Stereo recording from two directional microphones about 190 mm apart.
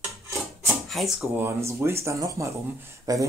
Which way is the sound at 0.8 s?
Centre (ahead or behind).